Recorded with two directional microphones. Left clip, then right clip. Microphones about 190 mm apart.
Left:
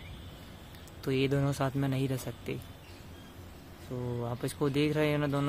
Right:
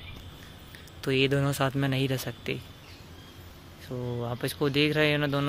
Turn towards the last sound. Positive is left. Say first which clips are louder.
# right 5 dB
turn(degrees=-5)  # may be behind; listen again after turning